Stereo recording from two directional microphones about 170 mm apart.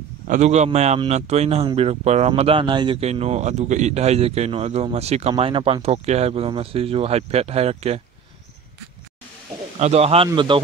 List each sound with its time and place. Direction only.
0.3 s speech: 40° right (ahead or behind)
9.8 s speech: 40° right (ahead or behind)